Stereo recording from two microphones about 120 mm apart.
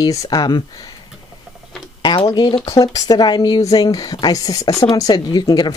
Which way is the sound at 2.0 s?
40° left (ahead or behind).